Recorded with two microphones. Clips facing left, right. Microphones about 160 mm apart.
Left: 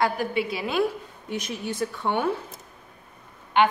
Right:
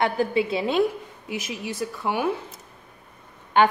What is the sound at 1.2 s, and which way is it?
Speech, 5° right (ahead or behind).